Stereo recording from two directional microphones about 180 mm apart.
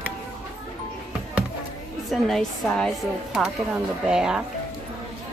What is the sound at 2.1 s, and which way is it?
Speech, centre (ahead or behind).